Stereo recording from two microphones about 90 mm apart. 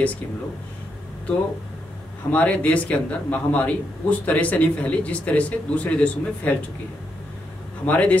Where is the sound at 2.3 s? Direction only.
15° left (ahead or behind).